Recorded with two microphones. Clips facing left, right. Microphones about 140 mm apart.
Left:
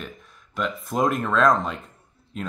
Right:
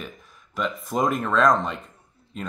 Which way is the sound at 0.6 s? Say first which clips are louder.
Left 1 dB; centre (ahead or behind).